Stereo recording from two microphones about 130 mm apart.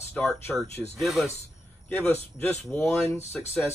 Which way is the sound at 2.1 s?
15° left (ahead or behind).